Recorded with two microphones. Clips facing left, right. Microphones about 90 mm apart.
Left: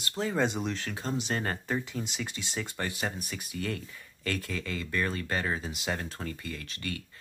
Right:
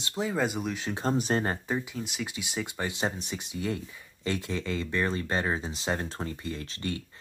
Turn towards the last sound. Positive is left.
turn(degrees=-30)  # may be behind; listen again after turning